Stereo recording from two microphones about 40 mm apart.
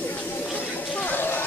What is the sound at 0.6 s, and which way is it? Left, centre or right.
Chatter, left.